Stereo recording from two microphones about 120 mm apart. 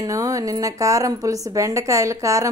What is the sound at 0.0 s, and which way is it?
Speech, 30° right (ahead or behind).